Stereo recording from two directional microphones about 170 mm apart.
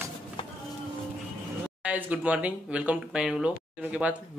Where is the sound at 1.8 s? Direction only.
10° right (ahead or behind).